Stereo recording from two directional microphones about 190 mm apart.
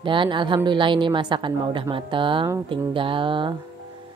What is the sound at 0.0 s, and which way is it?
Speech, 25° right (ahead or behind).